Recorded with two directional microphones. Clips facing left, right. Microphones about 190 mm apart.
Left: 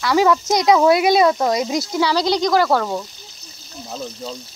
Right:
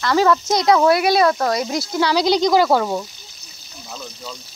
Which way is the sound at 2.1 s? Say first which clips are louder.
Right 3 dB; 15° right (ahead or behind).